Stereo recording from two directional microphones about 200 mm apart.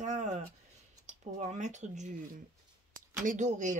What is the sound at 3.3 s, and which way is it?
Speech, 35° right (ahead or behind).